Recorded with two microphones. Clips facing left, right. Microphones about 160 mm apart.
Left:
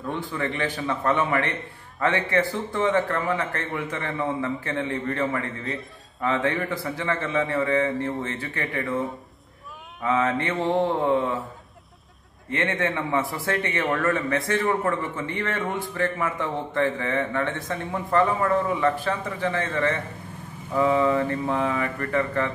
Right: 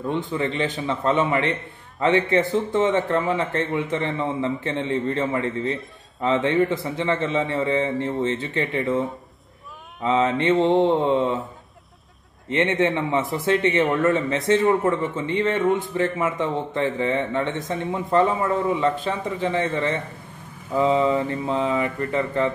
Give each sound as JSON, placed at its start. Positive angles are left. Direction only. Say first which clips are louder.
{"t": 0.1, "sound": "a man's voice", "louder": "right 3 dB", "side_deg": -20}
{"t": 10.0, "sound": "a man's voice", "louder": "right 4 dB", "side_deg": -20}
{"t": 12.4, "sound": "a man's voice", "louder": "right 5 dB", "side_deg": -20}